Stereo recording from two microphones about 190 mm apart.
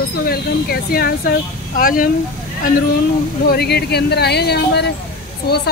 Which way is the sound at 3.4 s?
55° left (ahead or behind).